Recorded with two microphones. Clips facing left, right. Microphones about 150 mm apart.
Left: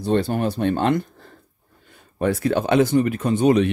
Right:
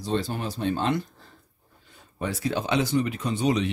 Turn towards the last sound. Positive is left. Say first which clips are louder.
# left 8 dB
turn(degrees=55)  # may be behind; listen again after turning